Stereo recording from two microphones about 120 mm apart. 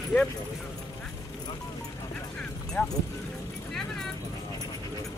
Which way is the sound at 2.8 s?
20° left (ahead or behind).